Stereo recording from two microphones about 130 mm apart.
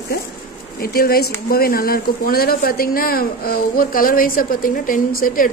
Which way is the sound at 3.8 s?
90° left.